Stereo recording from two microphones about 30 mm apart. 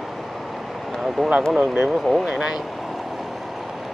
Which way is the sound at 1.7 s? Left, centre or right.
Right.